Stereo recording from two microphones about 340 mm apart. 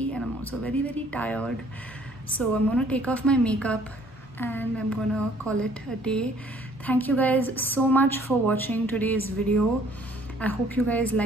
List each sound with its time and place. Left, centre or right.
0.0 s a woman's voice: centre
10.4 s a woman's voice: centre